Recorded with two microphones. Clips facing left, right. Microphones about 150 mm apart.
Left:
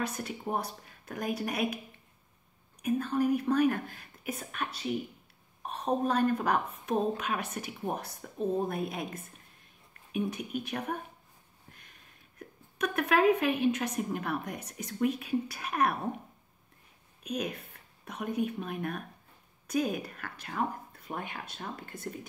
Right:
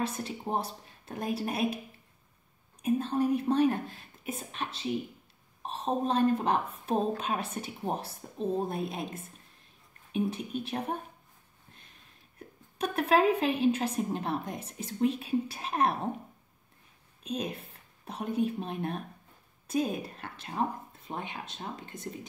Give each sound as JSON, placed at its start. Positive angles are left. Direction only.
{"t": 0.0, "sound": "a woman's voice", "side_deg": -30}
{"t": 2.8, "sound": "a woman's voice", "side_deg": -30}
{"t": 12.4, "sound": "a woman's voice", "side_deg": -30}
{"t": 17.2, "sound": "a woman's voice", "side_deg": -30}